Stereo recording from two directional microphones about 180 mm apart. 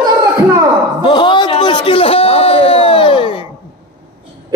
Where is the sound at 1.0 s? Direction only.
25° left (ahead or behind).